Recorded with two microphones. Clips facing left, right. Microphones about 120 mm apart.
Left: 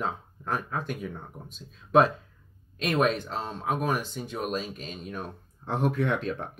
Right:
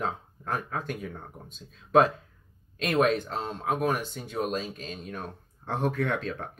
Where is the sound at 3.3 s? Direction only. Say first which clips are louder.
Even; 10° left (ahead or behind).